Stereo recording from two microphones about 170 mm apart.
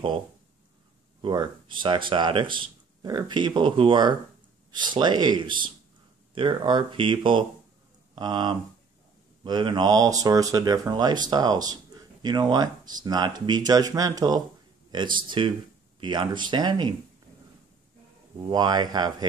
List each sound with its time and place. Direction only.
1.2 s speech: 25° right (ahead or behind)
18.5 s speech: 25° right (ahead or behind)